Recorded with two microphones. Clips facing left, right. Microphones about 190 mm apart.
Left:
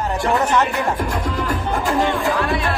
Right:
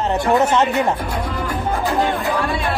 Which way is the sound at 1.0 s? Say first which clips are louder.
Left 1 dB; 45° left (ahead or behind).